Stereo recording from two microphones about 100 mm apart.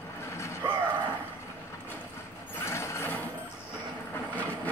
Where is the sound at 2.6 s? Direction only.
25° left (ahead or behind).